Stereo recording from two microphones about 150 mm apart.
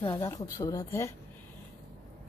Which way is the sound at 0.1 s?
20° left (ahead or behind).